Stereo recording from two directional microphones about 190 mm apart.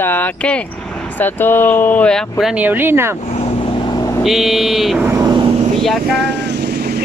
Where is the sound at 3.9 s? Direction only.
15° left (ahead or behind).